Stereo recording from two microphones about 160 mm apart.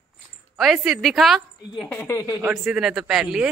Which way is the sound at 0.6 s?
Centre (ahead or behind).